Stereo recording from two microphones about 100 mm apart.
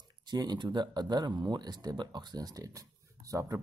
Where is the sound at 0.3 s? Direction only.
45° right (ahead or behind).